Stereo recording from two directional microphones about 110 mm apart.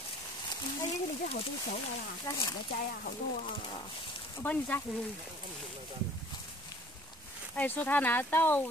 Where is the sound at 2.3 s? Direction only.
35° left (ahead or behind).